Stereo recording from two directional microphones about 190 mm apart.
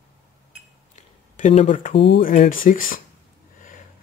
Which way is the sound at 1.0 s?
40° left (ahead or behind).